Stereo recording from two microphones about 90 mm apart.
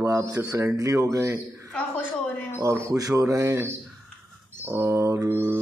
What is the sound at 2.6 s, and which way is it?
Speech, 35° right (ahead or behind).